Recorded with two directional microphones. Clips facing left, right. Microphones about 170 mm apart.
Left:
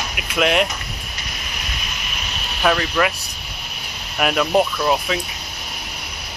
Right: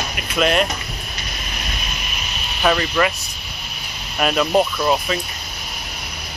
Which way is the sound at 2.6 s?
Centre (ahead or behind).